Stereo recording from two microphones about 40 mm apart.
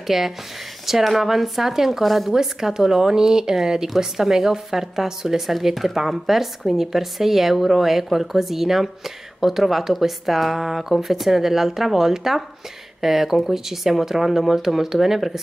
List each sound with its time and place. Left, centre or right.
0.0 s speech: centre